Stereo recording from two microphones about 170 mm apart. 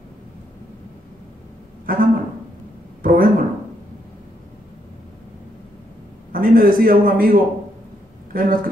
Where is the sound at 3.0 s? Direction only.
55° right (ahead or behind).